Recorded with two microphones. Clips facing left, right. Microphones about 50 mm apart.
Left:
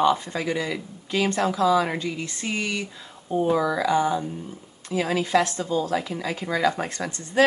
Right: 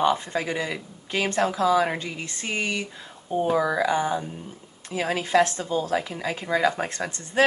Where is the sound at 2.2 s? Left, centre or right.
Right.